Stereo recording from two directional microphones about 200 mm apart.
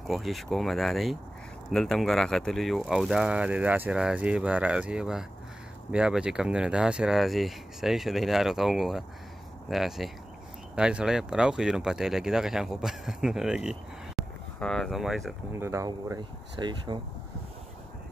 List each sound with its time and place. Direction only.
0.1 s speech: centre (ahead or behind)
15.5 s speech: 15° right (ahead or behind)